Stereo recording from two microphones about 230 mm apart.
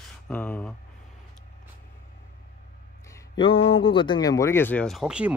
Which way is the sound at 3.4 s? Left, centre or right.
Left.